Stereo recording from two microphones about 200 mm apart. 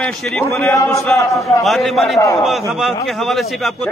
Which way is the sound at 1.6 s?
Centre (ahead or behind).